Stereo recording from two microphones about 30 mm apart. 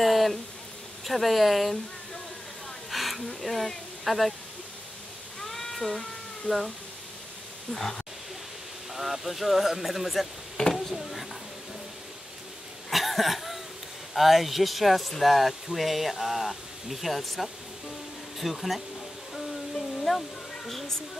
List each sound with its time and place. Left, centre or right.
0.0 s speech: centre
2.9 s a sound: centre
5.4 s cat: centre
6.5 s speech: left
7.7 s speech: centre
8.9 s speech: centre
10.6 s a sound: left
12.9 s cough: centre
14.1 s speech: centre
20.1 s a sound: centre